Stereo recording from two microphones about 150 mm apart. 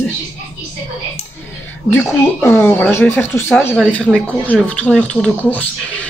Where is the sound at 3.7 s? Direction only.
5° left (ahead or behind).